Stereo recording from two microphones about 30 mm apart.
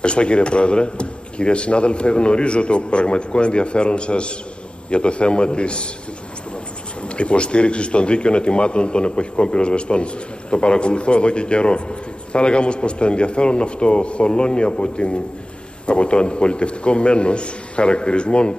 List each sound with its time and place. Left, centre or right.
0.0 s a man's voice: left
7.2 s a man's voice: left